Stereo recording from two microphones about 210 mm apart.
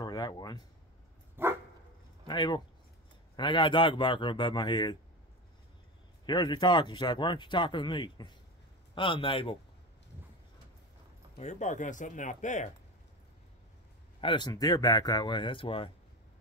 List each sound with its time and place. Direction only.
0.0 s speech: 20° left (ahead or behind)
1.4 s dog: 10° right (ahead or behind)
2.2 s speech: 20° left (ahead or behind)
6.2 s speech: 20° left (ahead or behind)
11.3 s speech: 35° left (ahead or behind)
14.2 s speech: 20° left (ahead or behind)